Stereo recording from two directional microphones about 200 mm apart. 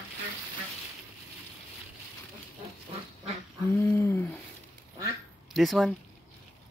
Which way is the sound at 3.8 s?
10° left (ahead or behind).